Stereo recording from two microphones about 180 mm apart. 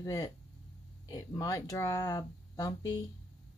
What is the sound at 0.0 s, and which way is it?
Speech, 20° left (ahead or behind).